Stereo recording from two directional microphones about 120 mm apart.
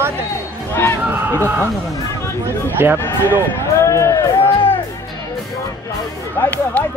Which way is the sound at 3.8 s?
25° left (ahead or behind).